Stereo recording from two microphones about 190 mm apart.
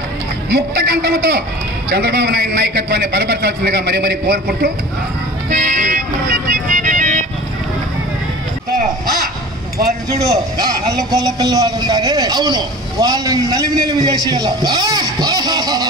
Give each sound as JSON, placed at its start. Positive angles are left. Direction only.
{"t": 0.5, "sound": "a man's voice", "side_deg": -60}
{"t": 5.6, "sound": "music", "side_deg": -50}
{"t": 10.2, "sound": "a man's voice", "side_deg": -20}